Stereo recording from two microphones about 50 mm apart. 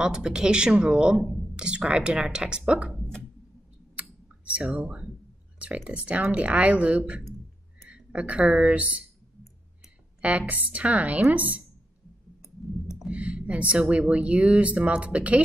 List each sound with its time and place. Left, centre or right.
0.0 s speech: centre
4.5 s speech: right
6.3 s speech: right
10.2 s a woman's voice: right
13.1 s speech: right